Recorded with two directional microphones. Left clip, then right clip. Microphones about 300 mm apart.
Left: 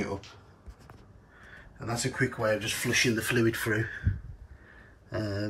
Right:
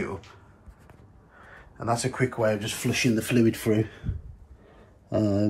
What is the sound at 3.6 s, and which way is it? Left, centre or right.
Speech, centre.